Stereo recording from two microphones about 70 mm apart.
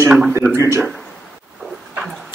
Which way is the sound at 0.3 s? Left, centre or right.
Right.